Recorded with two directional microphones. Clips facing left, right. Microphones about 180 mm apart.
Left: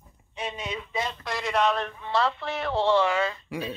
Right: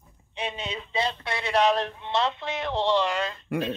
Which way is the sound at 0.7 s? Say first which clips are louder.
Right 4 dB; 30° right (ahead or behind).